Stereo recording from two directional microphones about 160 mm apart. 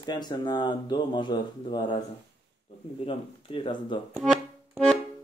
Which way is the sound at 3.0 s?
35° left (ahead or behind).